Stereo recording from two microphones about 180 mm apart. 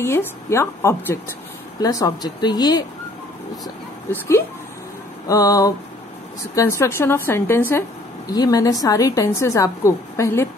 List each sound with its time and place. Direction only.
0.0 s a woman's voice: 15° left (ahead or behind)
5.3 s a woman's voice: 20° left (ahead or behind)